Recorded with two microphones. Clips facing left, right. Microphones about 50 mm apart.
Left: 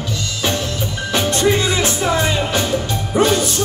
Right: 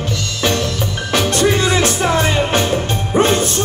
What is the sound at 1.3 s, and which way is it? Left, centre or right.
Music, right.